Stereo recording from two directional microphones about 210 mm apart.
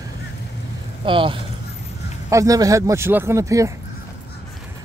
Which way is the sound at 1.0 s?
25° right (ahead or behind).